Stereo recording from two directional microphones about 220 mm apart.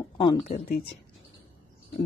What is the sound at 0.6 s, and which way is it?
Speech, 45° left (ahead or behind).